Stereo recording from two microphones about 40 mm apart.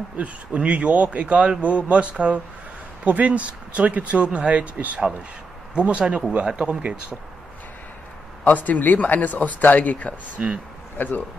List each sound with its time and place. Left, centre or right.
0.2 s speech: right
8.5 s speech: left
10.4 s speech: right
11.0 s speech: left